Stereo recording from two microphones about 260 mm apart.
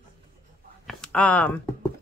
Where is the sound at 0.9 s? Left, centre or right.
Centre.